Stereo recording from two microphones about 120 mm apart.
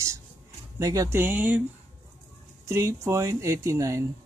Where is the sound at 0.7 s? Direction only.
30° right (ahead or behind).